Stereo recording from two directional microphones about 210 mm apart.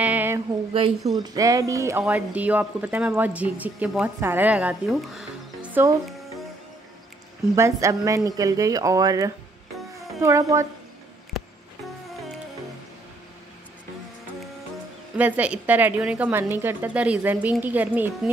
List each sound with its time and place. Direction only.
0.0 s a sound: 10° right (ahead or behind)
0.7 s a woman's voice: 25° right (ahead or behind); by 5.7 s 5° right (ahead or behind)
7.5 s speech: 15° right (ahead or behind)
15.1 s speech: 10° right (ahead or behind)